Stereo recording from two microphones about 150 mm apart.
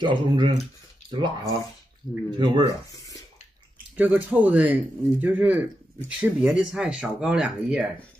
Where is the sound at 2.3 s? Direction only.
30° right (ahead or behind).